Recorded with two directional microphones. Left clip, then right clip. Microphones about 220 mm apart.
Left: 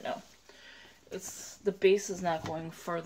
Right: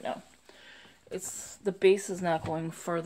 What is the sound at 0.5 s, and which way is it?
Speech, 35° right (ahead or behind).